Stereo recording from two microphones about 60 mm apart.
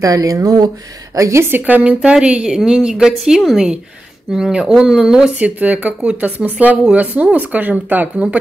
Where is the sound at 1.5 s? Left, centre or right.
Right; by 5.4 s centre.